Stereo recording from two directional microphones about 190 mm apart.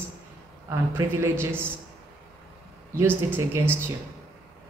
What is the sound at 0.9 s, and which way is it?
Speech, 15° right (ahead or behind).